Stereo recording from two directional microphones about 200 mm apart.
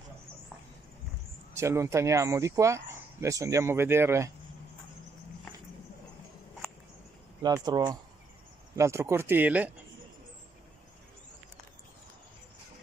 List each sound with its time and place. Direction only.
1.5 s speech: 15° right (ahead or behind)
7.4 s speech: 20° right (ahead or behind)